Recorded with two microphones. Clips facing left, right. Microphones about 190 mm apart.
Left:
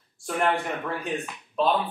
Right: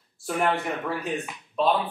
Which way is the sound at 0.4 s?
Centre (ahead or behind).